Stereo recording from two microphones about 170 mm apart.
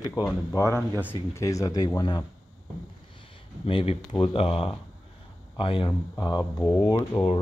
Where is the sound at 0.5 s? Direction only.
15° left (ahead or behind).